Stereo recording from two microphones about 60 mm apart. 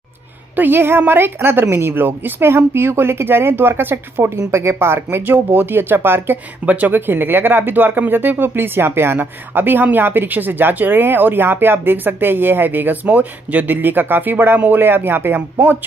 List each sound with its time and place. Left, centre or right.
0.6 s speech: right
6.6 s speech: right